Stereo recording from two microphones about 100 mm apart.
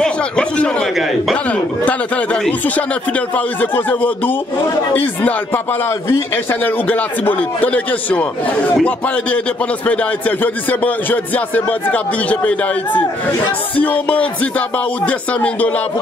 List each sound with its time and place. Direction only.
0.0 s a man's voice: 10° left (ahead or behind)